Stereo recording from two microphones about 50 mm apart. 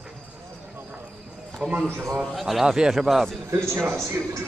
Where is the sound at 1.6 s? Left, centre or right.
Centre.